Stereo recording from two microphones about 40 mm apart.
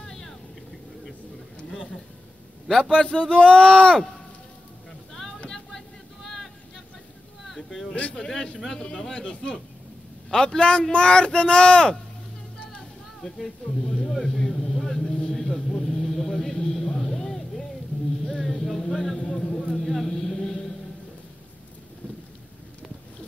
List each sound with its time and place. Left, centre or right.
0.0 s vehicle: centre
3.2 s speech: left
5.5 s boat: centre
7.4 s a sound: centre
7.9 s speech: left
8.7 s speech: centre
10.6 s speech: left
13.2 s speech: centre
14.7 s a sound: centre
19.7 s music: centre